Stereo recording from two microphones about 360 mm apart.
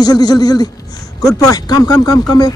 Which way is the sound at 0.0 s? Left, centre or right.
Centre.